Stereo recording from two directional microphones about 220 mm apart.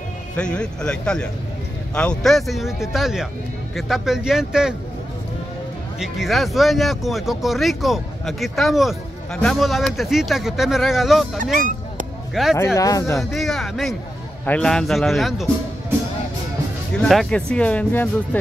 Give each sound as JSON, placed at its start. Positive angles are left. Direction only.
{"t": 0.4, "sound": "speech", "side_deg": 5}
{"t": 5.9, "sound": "speech", "side_deg": 0}
{"t": 11.5, "sound": "honk", "side_deg": -35}
{"t": 12.4, "sound": "speech", "side_deg": 0}
{"t": 12.7, "sound": "speech", "side_deg": 15}
{"t": 13.2, "sound": "speech", "side_deg": 0}
{"t": 17.0, "sound": "speech", "side_deg": 0}